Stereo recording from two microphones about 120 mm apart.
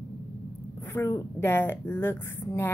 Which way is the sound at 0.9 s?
20° left (ahead or behind).